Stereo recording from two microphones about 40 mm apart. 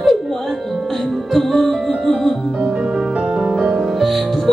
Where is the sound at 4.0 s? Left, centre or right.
Centre.